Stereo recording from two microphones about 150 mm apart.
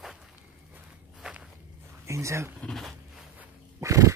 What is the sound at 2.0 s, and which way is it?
Speech, 20° right (ahead or behind).